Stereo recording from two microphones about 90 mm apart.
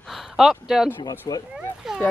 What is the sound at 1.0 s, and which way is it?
Speech, 45° left (ahead or behind).